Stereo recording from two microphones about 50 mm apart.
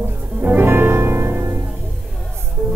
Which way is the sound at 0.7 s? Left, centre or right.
Right.